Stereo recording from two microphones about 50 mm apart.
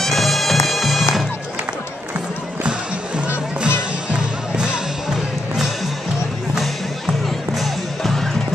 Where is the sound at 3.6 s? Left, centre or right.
Centre.